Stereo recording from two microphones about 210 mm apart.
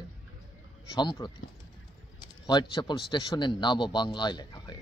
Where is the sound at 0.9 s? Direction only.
20° left (ahead or behind).